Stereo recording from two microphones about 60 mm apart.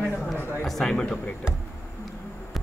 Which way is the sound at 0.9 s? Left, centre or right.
Centre.